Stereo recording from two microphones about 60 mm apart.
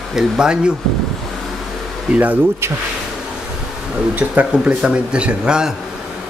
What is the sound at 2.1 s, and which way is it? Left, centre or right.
Speech, right.